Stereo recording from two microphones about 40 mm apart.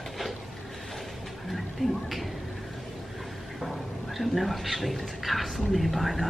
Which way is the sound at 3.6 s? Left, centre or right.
Centre.